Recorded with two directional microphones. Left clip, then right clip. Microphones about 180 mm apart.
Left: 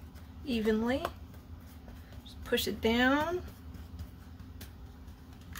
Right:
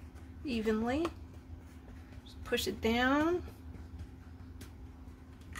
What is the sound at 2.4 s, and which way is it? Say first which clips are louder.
Speech: left 3 dB; 25° right (ahead or behind).